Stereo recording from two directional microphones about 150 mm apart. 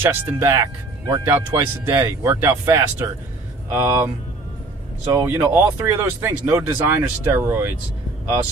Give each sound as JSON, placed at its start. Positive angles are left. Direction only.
{"t": 0.0, "sound": "speech", "side_deg": -15}
{"t": 5.1, "sound": "speech", "side_deg": -15}